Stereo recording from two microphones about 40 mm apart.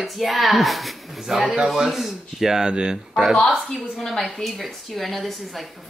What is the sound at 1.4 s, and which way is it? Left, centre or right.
Speech, right.